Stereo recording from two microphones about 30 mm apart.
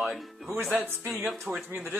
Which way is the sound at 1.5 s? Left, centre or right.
Right.